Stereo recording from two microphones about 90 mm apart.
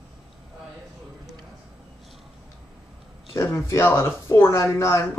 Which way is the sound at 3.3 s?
30° left (ahead or behind).